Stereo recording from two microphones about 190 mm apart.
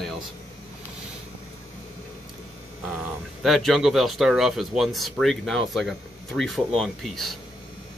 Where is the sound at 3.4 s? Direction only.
Centre (ahead or behind).